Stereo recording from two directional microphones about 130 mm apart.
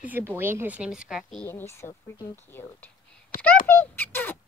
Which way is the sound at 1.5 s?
20° left (ahead or behind).